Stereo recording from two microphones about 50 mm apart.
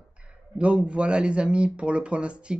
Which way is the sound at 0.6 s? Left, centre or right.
Right.